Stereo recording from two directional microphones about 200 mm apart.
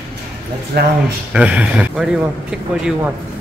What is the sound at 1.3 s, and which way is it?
Speech, 5° right (ahead or behind).